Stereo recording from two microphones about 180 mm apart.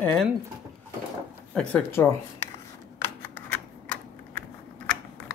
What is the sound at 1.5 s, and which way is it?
Speech, 5° left (ahead or behind).